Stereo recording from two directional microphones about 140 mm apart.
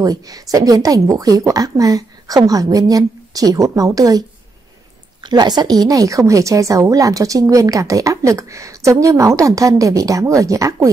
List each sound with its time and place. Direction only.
0.0 s a woman's voice: 25° right (ahead or behind)
5.2 s a woman's voice: 30° right (ahead or behind)